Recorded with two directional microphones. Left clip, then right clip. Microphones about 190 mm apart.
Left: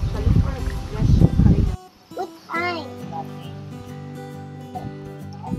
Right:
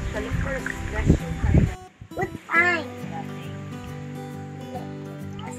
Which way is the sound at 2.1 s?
30° right (ahead or behind).